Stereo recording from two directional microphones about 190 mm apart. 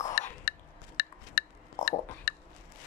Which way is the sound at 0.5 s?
55° left (ahead or behind).